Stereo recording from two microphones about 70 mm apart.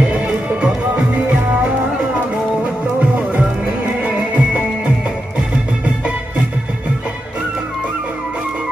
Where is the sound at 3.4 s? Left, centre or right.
Right.